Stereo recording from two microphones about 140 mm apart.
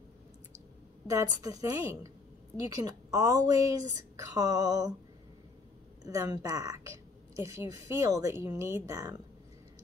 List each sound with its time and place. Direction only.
1.0 s a woman's voice: 25° right (ahead or behind)
6.0 s a woman's voice: 25° right (ahead or behind)